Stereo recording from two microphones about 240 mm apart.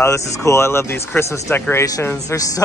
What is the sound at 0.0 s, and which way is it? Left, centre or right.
Speech, centre.